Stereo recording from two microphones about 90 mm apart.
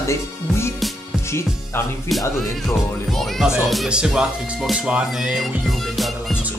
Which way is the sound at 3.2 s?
Centre (ahead or behind).